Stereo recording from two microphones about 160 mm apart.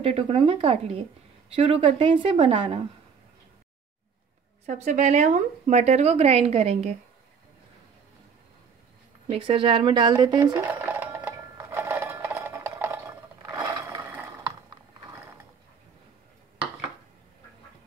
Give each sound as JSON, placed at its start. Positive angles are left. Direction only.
{"t": 0.0, "sound": "speech", "side_deg": -35}
{"t": 4.6, "sound": "a woman's voice", "side_deg": -45}
{"t": 9.3, "sound": "speech", "side_deg": -35}
{"t": 10.5, "sound": "a sound", "side_deg": -10}